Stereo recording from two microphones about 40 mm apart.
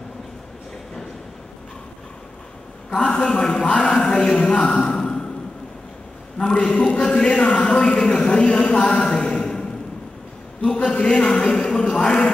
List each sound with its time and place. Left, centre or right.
2.9 s a man's voice: left
6.3 s a man's voice: left